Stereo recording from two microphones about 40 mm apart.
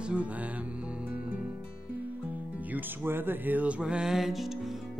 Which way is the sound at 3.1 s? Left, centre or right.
Right.